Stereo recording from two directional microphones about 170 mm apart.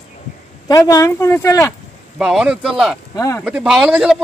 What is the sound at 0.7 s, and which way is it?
Speech, 20° left (ahead or behind).